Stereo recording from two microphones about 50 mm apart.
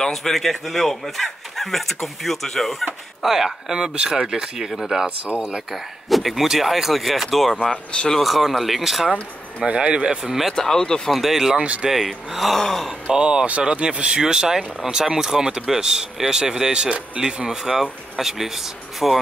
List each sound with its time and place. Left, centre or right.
0.0 s speech: centre
9.6 s speech: right
10.5 s speech: centre
11.1 s speech: centre
13.1 s speech: centre